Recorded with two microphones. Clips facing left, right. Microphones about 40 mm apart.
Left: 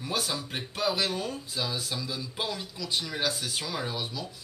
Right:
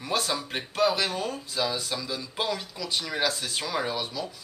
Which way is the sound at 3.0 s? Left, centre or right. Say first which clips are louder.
Right 5 dB; centre.